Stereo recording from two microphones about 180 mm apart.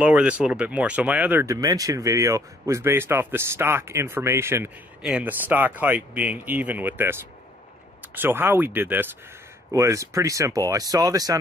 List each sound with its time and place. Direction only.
0.0 s speech: 5° right (ahead or behind)